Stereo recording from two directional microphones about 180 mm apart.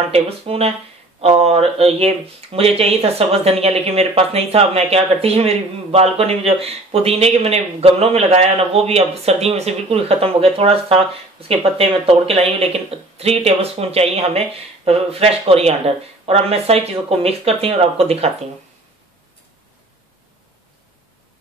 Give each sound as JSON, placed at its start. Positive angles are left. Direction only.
{"t": 0.1, "sound": "speech", "side_deg": -35}